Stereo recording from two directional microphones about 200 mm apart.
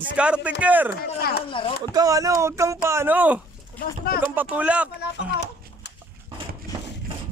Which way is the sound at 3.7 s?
45° left (ahead or behind).